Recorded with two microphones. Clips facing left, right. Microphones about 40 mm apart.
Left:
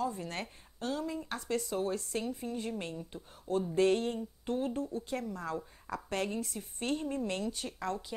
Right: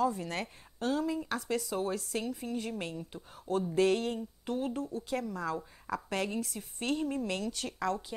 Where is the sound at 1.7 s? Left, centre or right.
Right.